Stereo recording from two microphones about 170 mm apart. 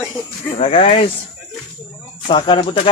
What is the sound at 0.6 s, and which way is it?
Speech, 35° left (ahead or behind).